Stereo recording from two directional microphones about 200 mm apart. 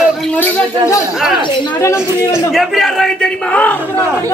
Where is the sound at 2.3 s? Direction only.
Centre (ahead or behind).